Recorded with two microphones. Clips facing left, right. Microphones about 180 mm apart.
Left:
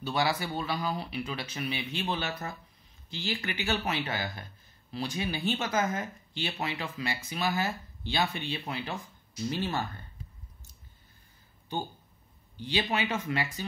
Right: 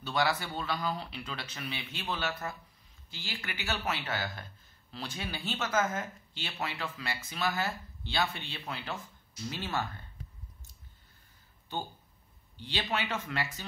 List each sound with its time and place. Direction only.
0.0 s speech: 10° left (ahead or behind)
12.5 s speech: 15° left (ahead or behind)